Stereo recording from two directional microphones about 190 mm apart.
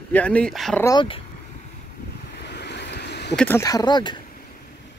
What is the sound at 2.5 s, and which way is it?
Vehicle, 60° left (ahead or behind).